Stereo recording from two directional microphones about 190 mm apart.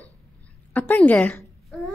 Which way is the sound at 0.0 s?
10° left (ahead or behind).